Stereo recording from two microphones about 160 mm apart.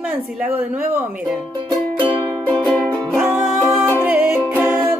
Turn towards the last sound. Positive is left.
turn(degrees=-10)  # may be behind; listen again after turning